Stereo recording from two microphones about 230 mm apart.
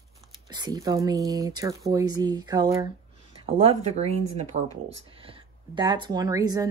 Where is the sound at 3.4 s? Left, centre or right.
Right.